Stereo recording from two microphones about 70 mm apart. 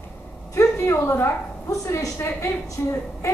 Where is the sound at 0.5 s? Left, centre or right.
Left.